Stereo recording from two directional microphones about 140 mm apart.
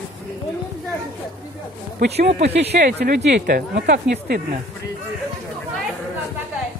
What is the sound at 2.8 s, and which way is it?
Speech, 90° right.